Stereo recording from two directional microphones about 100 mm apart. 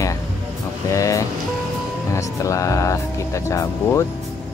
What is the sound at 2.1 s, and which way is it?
Speech, 30° left (ahead or behind).